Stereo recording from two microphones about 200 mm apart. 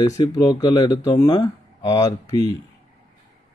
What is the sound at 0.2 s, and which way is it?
Speech, 20° left (ahead or behind).